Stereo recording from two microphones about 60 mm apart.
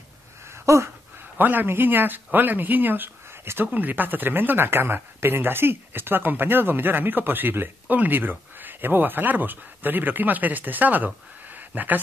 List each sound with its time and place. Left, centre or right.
0.7 s speech: right
1.4 s speech: right
11.5 s a sound: right